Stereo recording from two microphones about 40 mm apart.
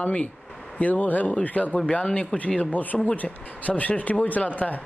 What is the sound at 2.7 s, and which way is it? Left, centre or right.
Speech, left.